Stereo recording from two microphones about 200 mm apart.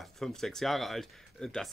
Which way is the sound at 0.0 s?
Centre (ahead or behind).